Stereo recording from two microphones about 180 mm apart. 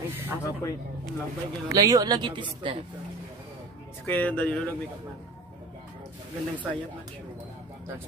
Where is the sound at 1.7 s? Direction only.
20° right (ahead or behind).